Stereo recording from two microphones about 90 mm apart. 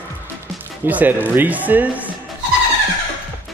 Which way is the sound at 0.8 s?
20° right (ahead or behind).